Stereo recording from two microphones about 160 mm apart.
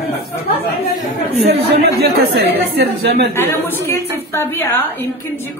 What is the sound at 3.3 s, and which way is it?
A woman's voice, 15° left (ahead or behind).